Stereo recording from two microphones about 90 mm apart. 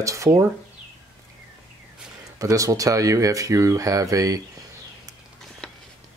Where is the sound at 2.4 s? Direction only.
40° right (ahead or behind).